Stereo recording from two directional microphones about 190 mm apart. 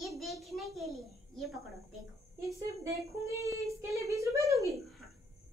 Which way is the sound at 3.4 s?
15° right (ahead or behind).